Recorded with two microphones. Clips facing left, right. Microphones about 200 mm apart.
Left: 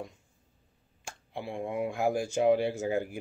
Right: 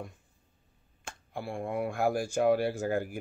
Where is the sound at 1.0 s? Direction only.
20° left (ahead or behind).